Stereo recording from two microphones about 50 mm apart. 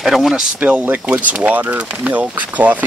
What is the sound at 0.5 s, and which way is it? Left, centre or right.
Speech, right.